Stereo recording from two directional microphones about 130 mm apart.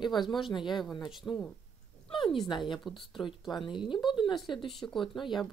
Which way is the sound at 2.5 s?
35° left (ahead or behind).